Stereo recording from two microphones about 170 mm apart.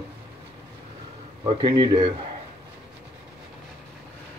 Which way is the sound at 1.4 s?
25° right (ahead or behind).